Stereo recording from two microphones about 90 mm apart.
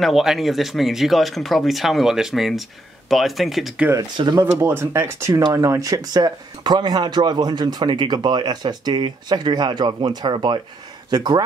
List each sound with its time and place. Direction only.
0.0 s speech: 5° right (ahead or behind)
4.4 s speech: 30° right (ahead or behind); by 11.4 s 50° right (ahead or behind)